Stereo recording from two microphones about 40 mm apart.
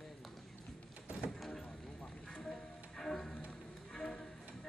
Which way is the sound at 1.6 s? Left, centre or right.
Left.